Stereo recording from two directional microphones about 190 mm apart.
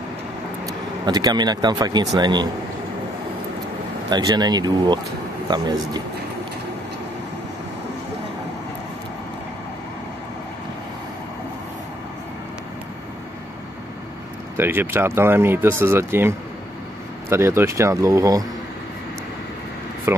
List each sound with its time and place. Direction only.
1.0 s speech: 20° right (ahead or behind)
4.1 s speech: 20° right (ahead or behind)
14.6 s speech: 10° right (ahead or behind)
20.1 s speech: 10° right (ahead or behind)